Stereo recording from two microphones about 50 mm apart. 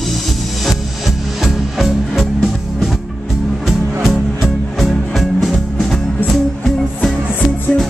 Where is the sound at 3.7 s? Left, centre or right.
Centre.